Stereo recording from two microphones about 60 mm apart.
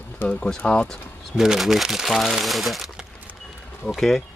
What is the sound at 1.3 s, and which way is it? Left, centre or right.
Speech, centre.